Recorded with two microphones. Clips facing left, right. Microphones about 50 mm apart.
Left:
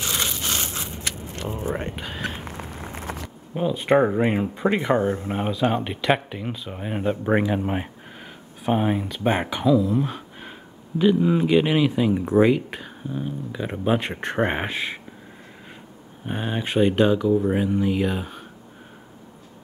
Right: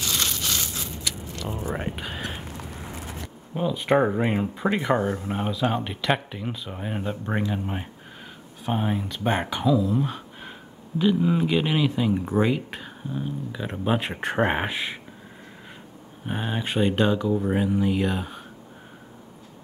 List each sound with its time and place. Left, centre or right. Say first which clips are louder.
0.0 s crushing: left 1 dB; left
0.4 s a sound: left 2 dB; left
1.8 s speech: even; centre
2.4 s a sound: left 2 dB; left
3.5 s speech: left 2 dB; centre
5.0 s speech: left 3 dB; left
5.3 s speech: left 2 dB; centre
8.6 s speech: left 4 dB; centre
16.3 s speech: left 1 dB; centre